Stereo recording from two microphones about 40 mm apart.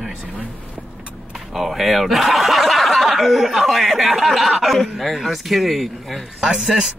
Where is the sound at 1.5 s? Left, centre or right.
Centre.